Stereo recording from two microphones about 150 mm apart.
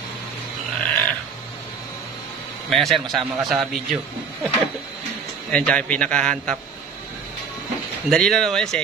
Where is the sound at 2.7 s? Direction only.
Centre (ahead or behind).